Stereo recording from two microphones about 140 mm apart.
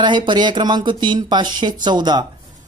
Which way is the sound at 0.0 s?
35° right (ahead or behind).